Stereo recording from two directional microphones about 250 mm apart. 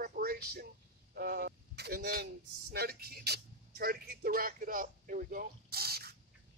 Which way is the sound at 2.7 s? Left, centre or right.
Right.